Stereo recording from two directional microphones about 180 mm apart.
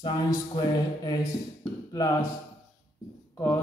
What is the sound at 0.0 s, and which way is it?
Speech, 25° left (ahead or behind).